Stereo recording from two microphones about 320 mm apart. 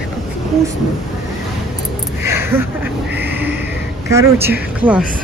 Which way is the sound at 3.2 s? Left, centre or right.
Right.